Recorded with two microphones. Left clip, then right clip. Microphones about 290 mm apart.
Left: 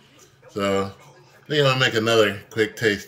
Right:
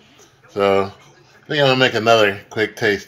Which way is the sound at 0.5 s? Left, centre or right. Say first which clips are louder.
Right 7 dB; centre.